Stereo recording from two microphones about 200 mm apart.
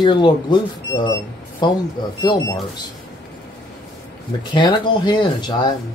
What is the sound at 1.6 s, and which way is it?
Speech, 20° left (ahead or behind).